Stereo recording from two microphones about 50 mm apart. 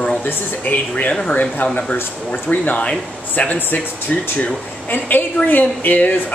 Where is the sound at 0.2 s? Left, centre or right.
Left.